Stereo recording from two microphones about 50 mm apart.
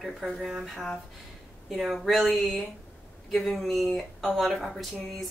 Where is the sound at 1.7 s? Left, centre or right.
Centre.